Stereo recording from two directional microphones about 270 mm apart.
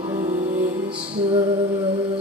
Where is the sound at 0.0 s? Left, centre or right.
Right.